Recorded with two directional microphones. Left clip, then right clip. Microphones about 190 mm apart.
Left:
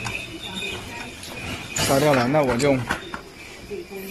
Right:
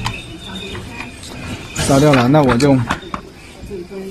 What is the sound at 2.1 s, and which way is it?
Speech, 15° right (ahead or behind).